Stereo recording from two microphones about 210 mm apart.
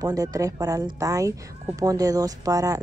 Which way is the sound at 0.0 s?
15° right (ahead or behind).